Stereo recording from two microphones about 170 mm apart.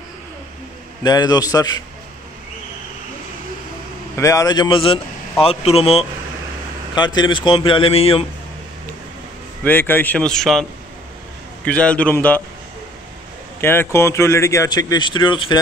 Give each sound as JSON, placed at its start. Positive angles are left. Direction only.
{"t": 1.0, "sound": "a man's voice", "side_deg": 25}
{"t": 4.2, "sound": "a man's voice", "side_deg": 20}
{"t": 7.0, "sound": "speech", "side_deg": 25}
{"t": 9.7, "sound": "a man's voice", "side_deg": 10}
{"t": 13.6, "sound": "speech", "side_deg": 15}